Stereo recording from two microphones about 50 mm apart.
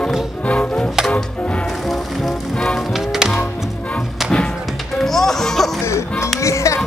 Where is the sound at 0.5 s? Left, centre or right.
Left.